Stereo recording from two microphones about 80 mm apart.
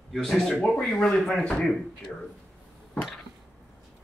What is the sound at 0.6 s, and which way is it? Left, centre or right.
Speech, centre.